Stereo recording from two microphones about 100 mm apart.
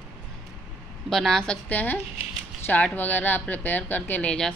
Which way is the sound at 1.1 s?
5° left (ahead or behind).